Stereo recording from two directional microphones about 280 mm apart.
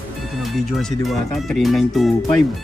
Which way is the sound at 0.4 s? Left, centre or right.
Centre.